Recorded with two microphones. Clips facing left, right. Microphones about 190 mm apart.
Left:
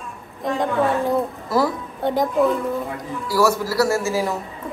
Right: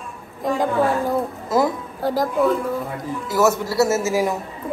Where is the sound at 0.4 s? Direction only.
Centre (ahead or behind).